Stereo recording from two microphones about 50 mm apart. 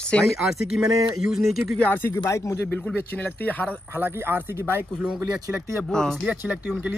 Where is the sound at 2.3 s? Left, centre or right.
Left.